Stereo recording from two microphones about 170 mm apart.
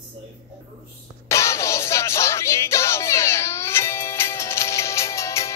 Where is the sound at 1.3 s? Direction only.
15° left (ahead or behind).